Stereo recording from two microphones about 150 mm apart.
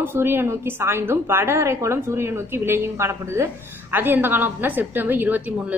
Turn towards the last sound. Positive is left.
turn(degrees=-10)  # may be behind; listen again after turning